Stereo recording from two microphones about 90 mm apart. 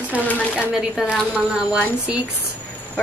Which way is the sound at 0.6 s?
10° right (ahead or behind).